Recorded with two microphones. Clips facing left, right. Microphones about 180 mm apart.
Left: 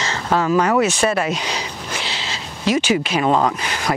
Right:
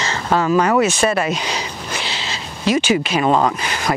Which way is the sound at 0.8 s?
10° right (ahead or behind).